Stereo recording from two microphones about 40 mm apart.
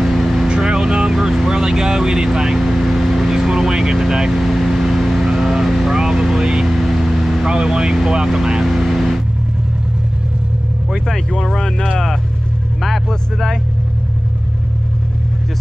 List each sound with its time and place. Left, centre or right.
0.0 s vehicle: centre
0.5 s vehicle: centre
4.4 s vehicle: centre
7.5 s speech: right
11.3 s speech: left
12.8 s speech: centre